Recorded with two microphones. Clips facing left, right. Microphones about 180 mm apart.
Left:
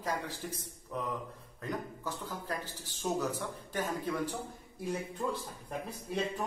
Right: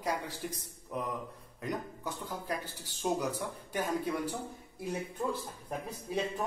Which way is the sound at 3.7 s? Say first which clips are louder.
Right 2 dB; 10° right (ahead or behind).